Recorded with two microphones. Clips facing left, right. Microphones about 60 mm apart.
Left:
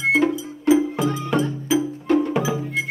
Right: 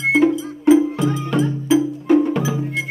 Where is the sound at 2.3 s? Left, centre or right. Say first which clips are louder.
Right 1 dB; centre.